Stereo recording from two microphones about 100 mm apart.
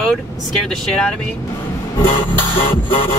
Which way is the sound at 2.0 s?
60° left (ahead or behind).